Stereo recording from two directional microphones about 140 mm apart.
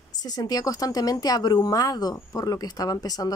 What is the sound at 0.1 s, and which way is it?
Speech, 30° left (ahead or behind).